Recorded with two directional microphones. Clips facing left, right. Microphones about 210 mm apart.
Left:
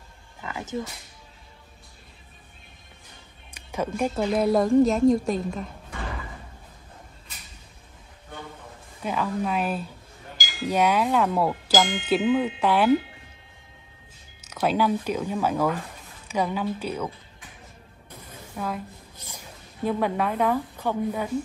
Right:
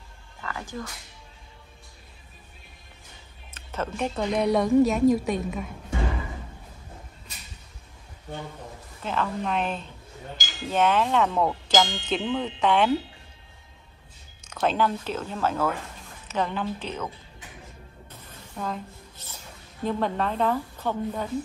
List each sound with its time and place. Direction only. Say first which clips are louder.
0.4 s music: left 4 dB; 20° left (ahead or behind)
3.5 s a woman's voice: left 3 dB; 10° left (ahead or behind)
9.0 s wind chime: left 2 dB; 10° left (ahead or behind)
14.4 s wind chime: left 1 dB; 10° left (ahead or behind)
18.6 s wind chime: left 1 dB; 5° left (ahead or behind)
19.2 s speech: left 3 dB; 10° left (ahead or behind)